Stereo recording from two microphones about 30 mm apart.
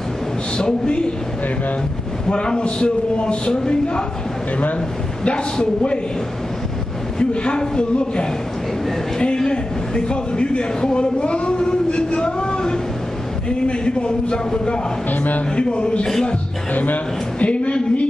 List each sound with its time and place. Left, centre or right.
0.6 s a man's voice: left
2.2 s a man's voice: left
5.2 s a man's voice: left
7.2 s a man's voice: left
15.0 s a man's voice: left
15.5 s a man's voice: left
16.7 s a man's voice: left
17.4 s a woman's voice: left